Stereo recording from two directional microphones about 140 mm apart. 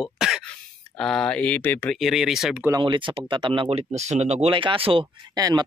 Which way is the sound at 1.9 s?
Centre (ahead or behind).